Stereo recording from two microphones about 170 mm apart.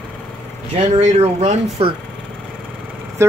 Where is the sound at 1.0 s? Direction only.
40° right (ahead or behind).